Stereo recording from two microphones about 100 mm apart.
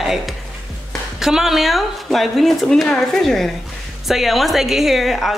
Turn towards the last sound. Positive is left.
turn(degrees=0)  # may be behind; listen again after turning